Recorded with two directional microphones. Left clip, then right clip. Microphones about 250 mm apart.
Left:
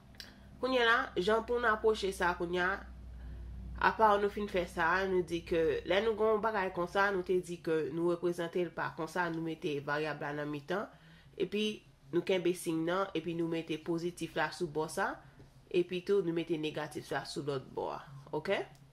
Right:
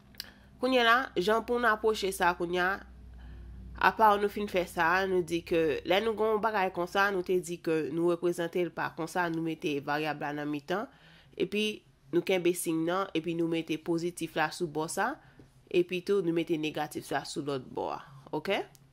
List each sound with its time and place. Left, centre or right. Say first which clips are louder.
0.2 s speech: right 5 dB; right